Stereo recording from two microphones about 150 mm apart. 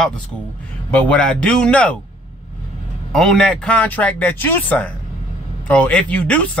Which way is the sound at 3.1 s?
Centre (ahead or behind).